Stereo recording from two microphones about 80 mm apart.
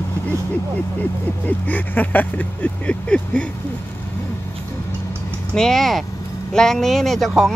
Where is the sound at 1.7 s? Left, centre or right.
Left.